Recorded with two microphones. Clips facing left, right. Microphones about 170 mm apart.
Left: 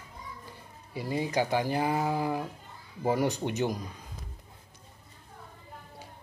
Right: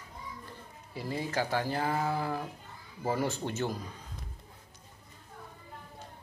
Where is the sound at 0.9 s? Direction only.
15° left (ahead or behind).